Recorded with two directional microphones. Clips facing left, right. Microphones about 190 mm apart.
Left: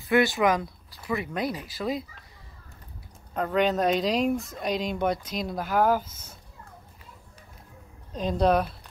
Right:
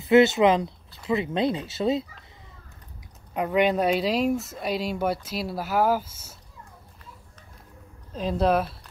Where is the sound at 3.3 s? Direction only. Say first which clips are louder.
Right 2 dB; 10° right (ahead or behind).